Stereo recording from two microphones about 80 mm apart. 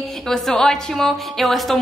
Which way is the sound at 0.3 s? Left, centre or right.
Centre.